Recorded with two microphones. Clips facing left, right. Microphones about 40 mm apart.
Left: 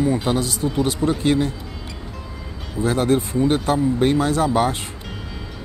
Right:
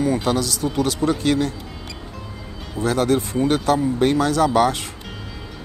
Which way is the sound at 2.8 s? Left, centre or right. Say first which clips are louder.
Even; right.